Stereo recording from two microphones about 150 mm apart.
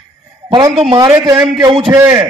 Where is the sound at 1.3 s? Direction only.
5° right (ahead or behind).